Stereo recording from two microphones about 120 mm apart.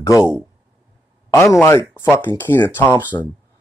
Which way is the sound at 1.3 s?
25° left (ahead or behind).